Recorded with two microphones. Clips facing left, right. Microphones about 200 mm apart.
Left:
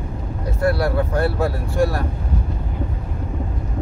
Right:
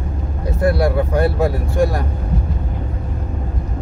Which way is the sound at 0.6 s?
15° right (ahead or behind).